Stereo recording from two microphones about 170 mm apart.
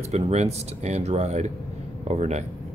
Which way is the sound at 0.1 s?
40° right (ahead or behind).